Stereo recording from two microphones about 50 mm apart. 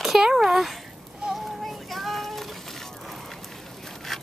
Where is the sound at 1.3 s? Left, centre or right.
Centre.